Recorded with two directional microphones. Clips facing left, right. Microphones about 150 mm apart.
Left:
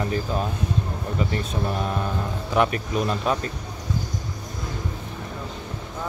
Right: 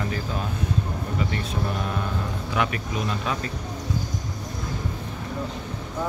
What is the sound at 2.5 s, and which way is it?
Speech, 35° left (ahead or behind).